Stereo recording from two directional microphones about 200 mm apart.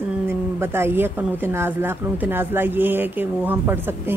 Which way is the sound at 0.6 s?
10° right (ahead or behind).